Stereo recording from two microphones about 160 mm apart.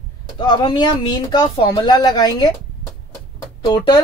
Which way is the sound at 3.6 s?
25° left (ahead or behind).